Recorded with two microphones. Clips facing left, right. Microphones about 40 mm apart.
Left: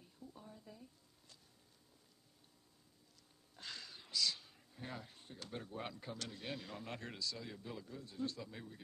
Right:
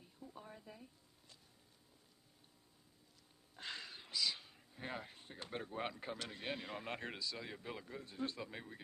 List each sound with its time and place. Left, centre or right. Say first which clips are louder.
0.4 s speech: right 4 dB; right
3.5 s speech: right 3 dB; right